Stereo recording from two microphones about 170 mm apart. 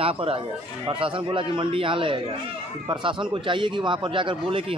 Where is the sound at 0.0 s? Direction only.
35° right (ahead or behind).